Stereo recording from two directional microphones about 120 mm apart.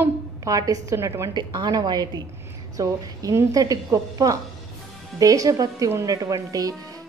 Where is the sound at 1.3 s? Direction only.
40° right (ahead or behind).